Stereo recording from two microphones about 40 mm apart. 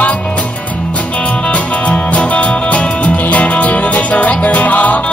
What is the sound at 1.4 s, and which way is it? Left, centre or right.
Music, left.